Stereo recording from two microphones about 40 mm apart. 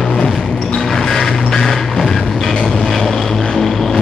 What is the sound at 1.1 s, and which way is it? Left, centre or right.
Music, centre.